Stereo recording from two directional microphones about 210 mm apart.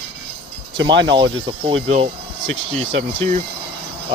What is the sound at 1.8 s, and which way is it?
Speech, 30° right (ahead or behind).